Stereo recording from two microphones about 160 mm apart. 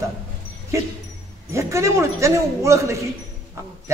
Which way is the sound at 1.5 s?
20° right (ahead or behind).